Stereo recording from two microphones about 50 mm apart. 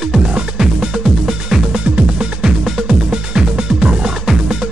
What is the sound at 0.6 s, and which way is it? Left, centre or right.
Music, centre.